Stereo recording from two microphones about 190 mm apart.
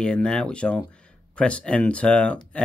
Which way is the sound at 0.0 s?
5° left (ahead or behind).